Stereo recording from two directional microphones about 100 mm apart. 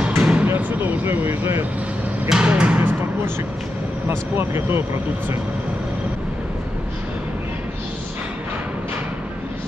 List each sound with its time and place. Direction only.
0.2 s a sound: 10° right (ahead or behind)
0.5 s vehicle: 20° right (ahead or behind)
2.2 s music: 10° right (ahead or behind)
4.1 s speech: 25° right (ahead or behind)